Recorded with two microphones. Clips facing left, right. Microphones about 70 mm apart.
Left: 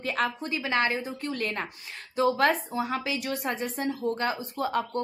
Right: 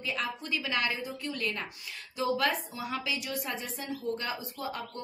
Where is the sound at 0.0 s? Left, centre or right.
Left.